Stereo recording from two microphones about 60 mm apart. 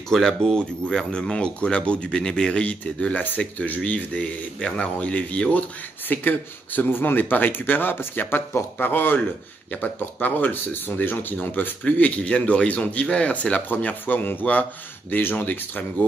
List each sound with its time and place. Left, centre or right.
0.1 s speech: centre; by 9.2 s left
10.2 s speech: left